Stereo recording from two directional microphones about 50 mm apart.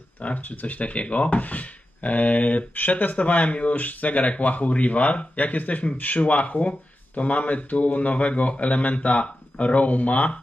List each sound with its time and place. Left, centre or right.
0.2 s speech: left